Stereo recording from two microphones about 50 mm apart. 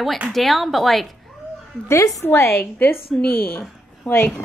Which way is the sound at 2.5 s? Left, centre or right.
Left.